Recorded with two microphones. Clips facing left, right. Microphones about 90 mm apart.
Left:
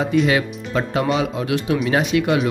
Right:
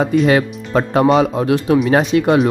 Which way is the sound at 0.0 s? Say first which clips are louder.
Right 4 dB; 40° right (ahead or behind).